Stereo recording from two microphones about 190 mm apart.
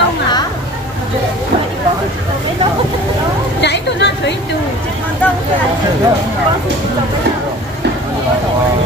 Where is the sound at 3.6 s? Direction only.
65° left (ahead or behind).